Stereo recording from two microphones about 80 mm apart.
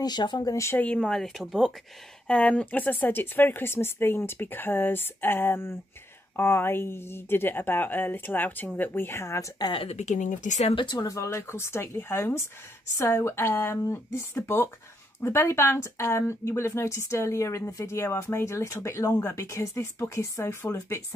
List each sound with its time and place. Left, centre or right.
0.0 s speech: left
0.5 s speech: left
0.9 s speech: centre
2.2 s speech: centre; by 9.5 s left
10.7 s speech: left
11.1 s speech: left